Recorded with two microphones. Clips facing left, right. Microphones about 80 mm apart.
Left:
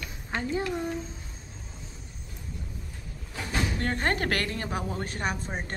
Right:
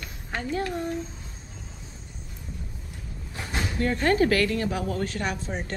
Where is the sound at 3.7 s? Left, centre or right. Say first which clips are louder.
Right 9 dB; left.